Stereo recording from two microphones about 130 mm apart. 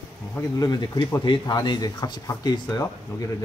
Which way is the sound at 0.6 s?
30° left (ahead or behind).